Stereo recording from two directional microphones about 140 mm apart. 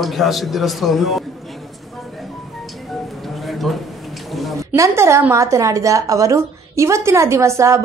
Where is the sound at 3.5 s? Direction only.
Centre (ahead or behind).